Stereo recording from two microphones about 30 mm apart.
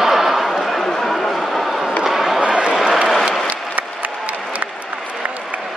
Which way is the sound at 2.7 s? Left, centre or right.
Centre.